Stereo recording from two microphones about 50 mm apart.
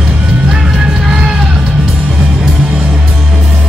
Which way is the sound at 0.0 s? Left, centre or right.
Centre.